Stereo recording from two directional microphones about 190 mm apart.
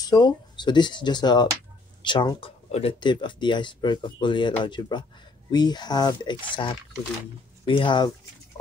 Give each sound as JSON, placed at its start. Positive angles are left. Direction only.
{"t": 0.0, "sound": "speech", "side_deg": 20}